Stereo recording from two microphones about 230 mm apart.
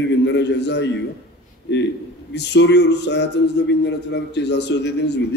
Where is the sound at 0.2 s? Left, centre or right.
Left.